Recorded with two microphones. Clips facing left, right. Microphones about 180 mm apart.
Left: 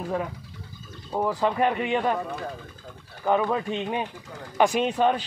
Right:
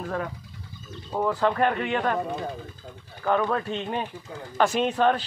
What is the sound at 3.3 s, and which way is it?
Speech, 10° left (ahead or behind).